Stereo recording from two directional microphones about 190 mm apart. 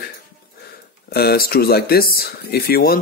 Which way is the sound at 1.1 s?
55° left (ahead or behind).